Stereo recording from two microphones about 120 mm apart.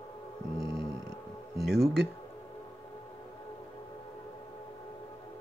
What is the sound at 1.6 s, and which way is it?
Speech, centre (ahead or behind).